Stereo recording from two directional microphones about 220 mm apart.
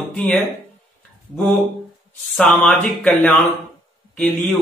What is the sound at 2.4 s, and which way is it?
Speech, 5° left (ahead or behind).